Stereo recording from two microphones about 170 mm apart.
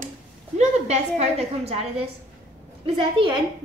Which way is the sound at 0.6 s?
40° right (ahead or behind).